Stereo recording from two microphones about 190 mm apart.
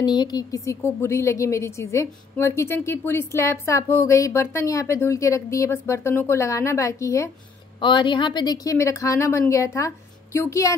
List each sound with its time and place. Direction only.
0.0 s a woman's voice: 20° left (ahead or behind)